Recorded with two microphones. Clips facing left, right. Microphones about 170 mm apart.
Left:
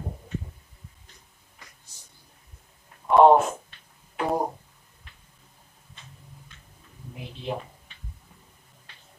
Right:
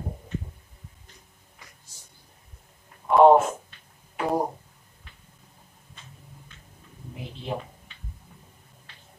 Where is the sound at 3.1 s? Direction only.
Centre (ahead or behind).